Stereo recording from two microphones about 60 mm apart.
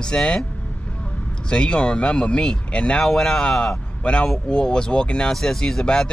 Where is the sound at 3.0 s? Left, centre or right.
Centre.